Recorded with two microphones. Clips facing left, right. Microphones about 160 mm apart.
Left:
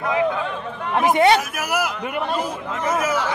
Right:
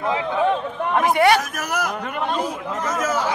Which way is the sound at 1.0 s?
20° left (ahead or behind).